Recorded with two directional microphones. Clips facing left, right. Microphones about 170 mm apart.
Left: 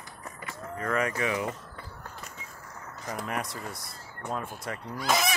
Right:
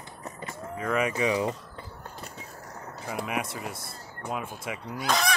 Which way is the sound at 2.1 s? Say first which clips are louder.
Right 3 dB; 35° right (ahead or behind).